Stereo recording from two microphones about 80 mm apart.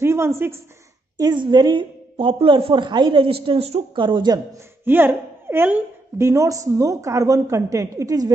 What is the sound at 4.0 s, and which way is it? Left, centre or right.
Speech, right.